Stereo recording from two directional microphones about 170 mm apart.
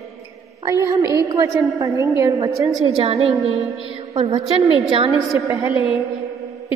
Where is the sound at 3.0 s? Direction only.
35° right (ahead or behind).